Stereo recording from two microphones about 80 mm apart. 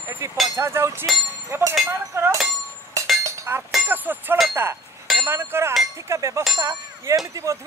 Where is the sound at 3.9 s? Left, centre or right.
Right.